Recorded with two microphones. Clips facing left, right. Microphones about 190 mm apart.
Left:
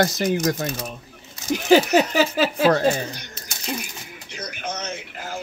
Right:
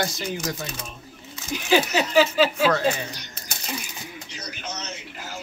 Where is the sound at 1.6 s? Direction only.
45° left (ahead or behind).